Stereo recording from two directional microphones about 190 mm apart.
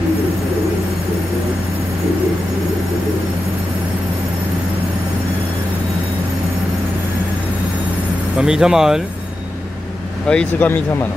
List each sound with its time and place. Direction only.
8.4 s speech: 5° right (ahead or behind)
10.2 s speech: 5° left (ahead or behind)